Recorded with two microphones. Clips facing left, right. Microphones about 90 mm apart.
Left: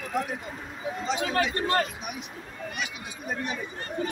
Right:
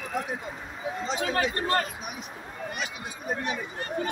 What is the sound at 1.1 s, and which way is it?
Speech, 35° right (ahead or behind).